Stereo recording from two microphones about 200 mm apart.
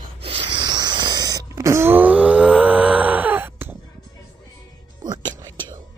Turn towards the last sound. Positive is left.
turn(degrees=-20)  # may be behind; listen again after turning